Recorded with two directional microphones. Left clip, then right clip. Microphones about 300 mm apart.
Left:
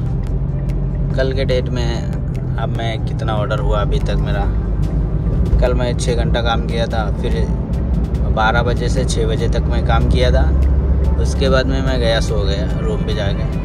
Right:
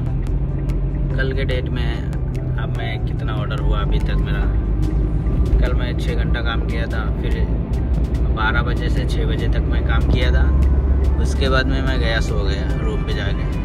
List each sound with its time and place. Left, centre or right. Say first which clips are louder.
1.1 s speech: left 6 dB; centre
5.6 s speech: left 11 dB; centre
8.4 s speech: left 6 dB; centre
11.4 s speech: left 3 dB; centre